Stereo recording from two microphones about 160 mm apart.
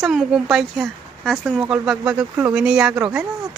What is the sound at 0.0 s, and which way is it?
A woman's voice, 5° right (ahead or behind).